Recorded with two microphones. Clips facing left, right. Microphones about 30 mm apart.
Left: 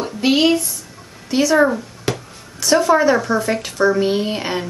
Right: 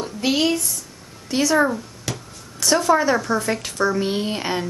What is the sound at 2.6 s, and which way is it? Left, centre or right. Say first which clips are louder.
Speech: left 4 dB; centre.